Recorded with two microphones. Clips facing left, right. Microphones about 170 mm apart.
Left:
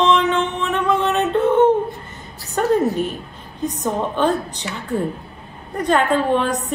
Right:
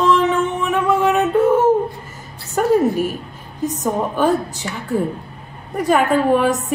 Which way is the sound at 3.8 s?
5° right (ahead or behind).